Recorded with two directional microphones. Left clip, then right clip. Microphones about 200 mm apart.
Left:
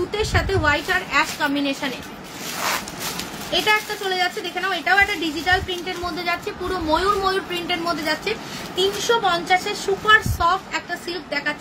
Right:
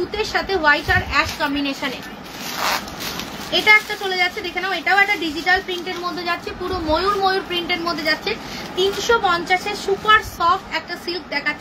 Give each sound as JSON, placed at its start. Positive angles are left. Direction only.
{"t": 0.1, "sound": "speech", "side_deg": 15}
{"t": 3.5, "sound": "a woman's voice", "side_deg": 10}